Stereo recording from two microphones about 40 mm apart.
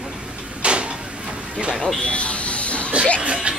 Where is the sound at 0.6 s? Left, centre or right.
Right.